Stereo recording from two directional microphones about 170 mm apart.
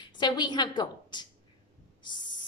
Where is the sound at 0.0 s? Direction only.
25° left (ahead or behind).